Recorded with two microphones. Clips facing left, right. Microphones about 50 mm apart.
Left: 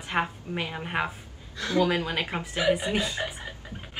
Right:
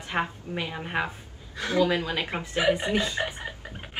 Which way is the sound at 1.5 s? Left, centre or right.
Right.